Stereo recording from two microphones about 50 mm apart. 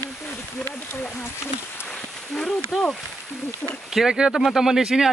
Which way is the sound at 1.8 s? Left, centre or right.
Centre.